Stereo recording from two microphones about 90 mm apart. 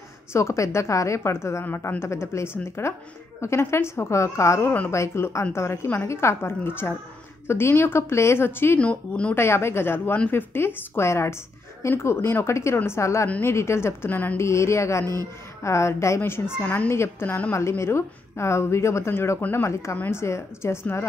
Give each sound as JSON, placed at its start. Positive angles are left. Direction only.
{"t": 0.3, "sound": "a woman's voice", "side_deg": 35}
{"t": 8.7, "sound": "speech", "side_deg": 15}
{"t": 9.3, "sound": "a woman's voice", "side_deg": 30}